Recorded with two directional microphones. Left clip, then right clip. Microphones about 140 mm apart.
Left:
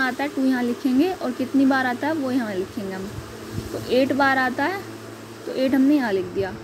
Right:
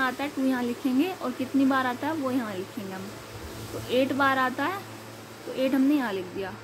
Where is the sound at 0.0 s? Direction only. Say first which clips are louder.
Left 4 dB; 20° left (ahead or behind).